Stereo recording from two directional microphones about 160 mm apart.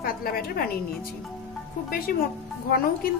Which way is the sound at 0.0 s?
65° left (ahead or behind).